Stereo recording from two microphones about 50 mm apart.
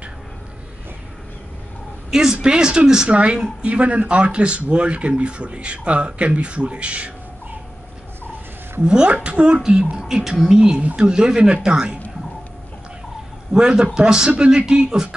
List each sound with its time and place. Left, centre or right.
2.0 s a man's voice: centre
8.8 s speech: centre
10.8 s speech: right
11.1 s speech: centre
13.5 s speech: centre